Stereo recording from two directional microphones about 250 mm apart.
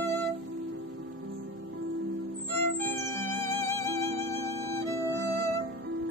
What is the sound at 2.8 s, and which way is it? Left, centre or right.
Music, centre.